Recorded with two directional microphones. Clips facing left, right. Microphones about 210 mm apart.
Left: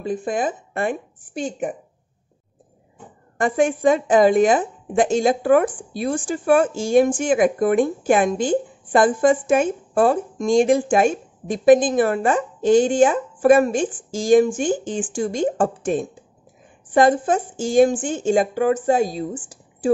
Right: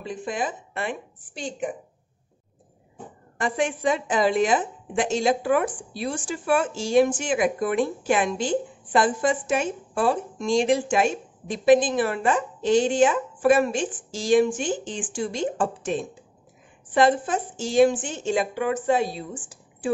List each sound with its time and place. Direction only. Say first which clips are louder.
0.0 s a woman's voice: left 6 dB; 50° left (ahead or behind)
3.3 s a woman's voice: left 6 dB; 55° left (ahead or behind)